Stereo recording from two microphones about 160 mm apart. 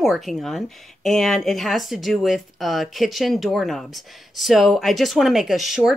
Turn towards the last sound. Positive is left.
turn(degrees=0)  # may be behind; listen again after turning